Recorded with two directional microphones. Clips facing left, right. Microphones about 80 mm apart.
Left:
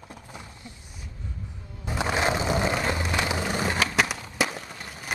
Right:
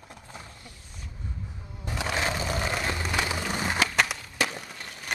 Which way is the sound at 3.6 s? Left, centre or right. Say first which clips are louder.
Right 1 dB; centre.